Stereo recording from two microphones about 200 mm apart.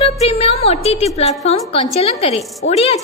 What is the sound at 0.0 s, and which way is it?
A woman's voice, 30° left (ahead or behind).